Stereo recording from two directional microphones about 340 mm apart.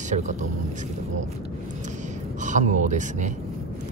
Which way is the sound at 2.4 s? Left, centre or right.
Right.